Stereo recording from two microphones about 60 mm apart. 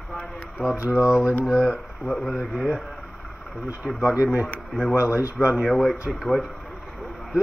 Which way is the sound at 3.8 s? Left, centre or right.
Centre.